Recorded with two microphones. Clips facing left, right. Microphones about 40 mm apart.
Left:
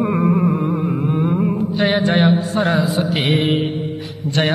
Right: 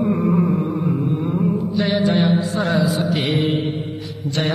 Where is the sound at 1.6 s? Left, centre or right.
Left.